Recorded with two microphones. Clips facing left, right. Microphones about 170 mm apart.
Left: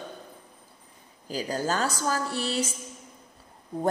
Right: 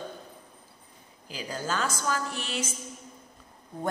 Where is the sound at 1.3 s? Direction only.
40° left (ahead or behind).